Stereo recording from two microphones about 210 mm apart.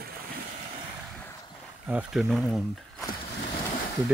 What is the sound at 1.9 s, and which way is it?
Speech, 5° right (ahead or behind).